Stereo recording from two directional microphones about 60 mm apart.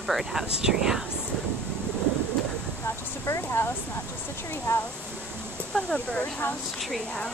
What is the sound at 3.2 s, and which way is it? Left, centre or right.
Speech, left.